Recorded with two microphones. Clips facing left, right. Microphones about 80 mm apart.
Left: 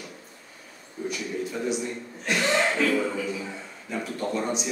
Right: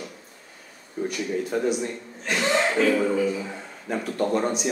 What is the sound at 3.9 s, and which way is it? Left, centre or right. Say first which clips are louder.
Speech: right 5 dB; right.